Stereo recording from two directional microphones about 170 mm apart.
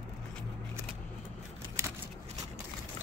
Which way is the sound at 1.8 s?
15° right (ahead or behind).